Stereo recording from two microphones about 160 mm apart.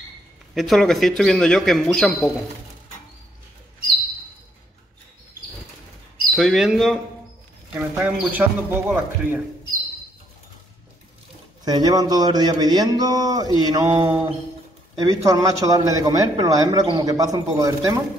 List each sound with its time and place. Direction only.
0.6 s a man's voice: centre (ahead or behind)
6.3 s a man's voice: centre (ahead or behind)
11.6 s a man's voice: 25° right (ahead or behind)